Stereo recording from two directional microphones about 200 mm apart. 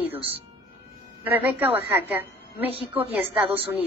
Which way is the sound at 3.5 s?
30° right (ahead or behind).